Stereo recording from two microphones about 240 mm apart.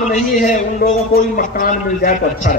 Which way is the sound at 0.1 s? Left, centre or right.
Left.